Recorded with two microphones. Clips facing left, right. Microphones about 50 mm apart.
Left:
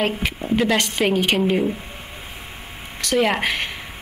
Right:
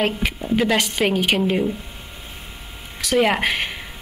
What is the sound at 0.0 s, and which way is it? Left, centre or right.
A woman's voice, centre.